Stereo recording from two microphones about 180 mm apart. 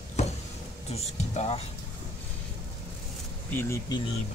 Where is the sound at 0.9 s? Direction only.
35° left (ahead or behind).